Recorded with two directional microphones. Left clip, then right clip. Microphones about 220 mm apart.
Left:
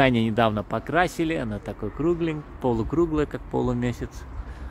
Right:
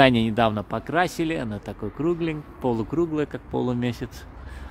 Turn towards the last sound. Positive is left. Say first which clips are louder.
# right 1 dB
turn(degrees=-15)  # may be behind; listen again after turning